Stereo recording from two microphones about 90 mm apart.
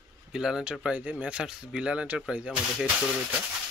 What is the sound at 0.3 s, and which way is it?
Speech, 5° right (ahead or behind).